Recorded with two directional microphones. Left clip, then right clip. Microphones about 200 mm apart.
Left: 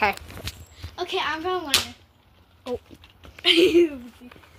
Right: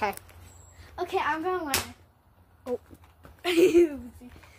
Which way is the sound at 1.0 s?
5° right (ahead or behind).